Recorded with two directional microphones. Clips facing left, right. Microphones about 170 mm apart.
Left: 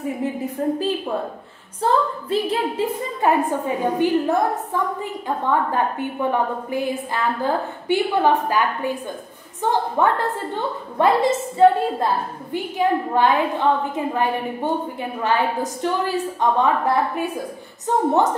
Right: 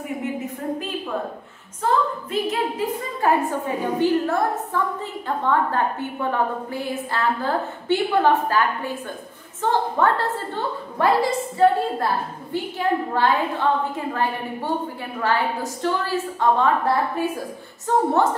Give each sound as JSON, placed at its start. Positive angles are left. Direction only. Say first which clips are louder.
{"t": 0.2, "sound": "a sound", "louder": "right 1 dB", "side_deg": 30}
{"t": 0.6, "sound": "a woman's voice", "louder": "left 7 dB", "side_deg": 35}
{"t": 1.8, "sound": "a woman's voice", "louder": "left 2 dB", "side_deg": 35}